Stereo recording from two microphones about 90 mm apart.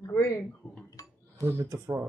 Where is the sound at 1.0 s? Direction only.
45° left (ahead or behind).